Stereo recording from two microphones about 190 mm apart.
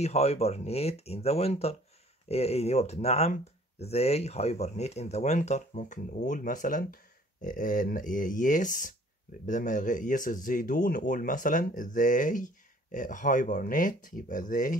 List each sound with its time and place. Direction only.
0.0 s speech: 35° left (ahead or behind)